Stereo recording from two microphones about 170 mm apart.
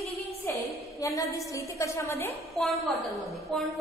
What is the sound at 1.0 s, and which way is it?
A woman's voice, 20° left (ahead or behind).